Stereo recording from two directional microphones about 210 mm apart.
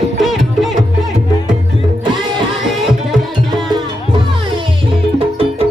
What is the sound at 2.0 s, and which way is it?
Music, 20° right (ahead or behind).